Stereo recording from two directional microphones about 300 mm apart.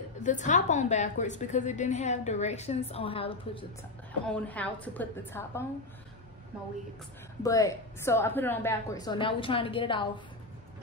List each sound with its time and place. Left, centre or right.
0.2 s a woman's voice: left
4.3 s a woman's voice: centre
7.4 s a woman's voice: centre